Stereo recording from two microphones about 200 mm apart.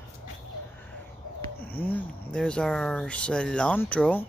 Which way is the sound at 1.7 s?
10° left (ahead or behind).